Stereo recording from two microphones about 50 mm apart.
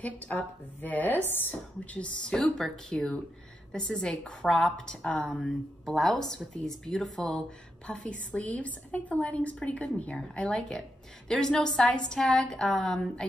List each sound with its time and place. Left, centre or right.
0.0 s a woman's voice: left
1.5 s speech: left
2.3 s a woman's voice: centre; by 10.1 s left
10.1 s a woman's voice: centre